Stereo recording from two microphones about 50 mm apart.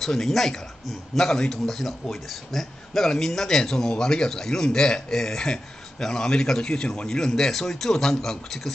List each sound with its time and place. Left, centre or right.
0.0 s a man's voice: centre